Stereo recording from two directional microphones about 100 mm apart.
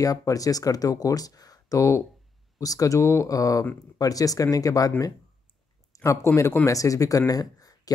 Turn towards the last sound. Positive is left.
turn(degrees=40)  # may be behind; listen again after turning